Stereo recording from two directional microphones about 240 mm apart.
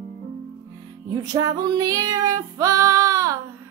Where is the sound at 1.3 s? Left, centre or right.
Centre.